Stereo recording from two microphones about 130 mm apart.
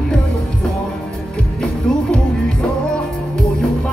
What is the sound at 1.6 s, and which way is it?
Music, 5° left (ahead or behind).